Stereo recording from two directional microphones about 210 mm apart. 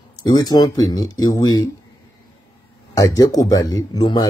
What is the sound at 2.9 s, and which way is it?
Speech, 15° left (ahead or behind).